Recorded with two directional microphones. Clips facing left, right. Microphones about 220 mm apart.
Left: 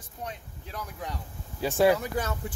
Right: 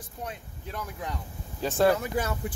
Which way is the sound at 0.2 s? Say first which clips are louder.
Right 1 dB; centre (ahead or behind).